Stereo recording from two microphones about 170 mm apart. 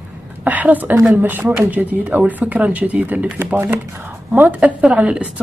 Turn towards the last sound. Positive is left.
turn(degrees=-5)  # may be behind; listen again after turning